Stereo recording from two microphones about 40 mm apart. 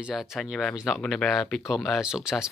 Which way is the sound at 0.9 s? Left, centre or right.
Centre.